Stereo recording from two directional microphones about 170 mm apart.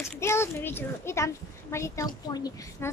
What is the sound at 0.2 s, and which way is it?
A child's voice, 15° left (ahead or behind).